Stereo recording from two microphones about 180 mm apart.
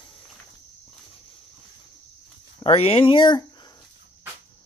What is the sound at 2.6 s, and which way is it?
Speech, 30° left (ahead or behind).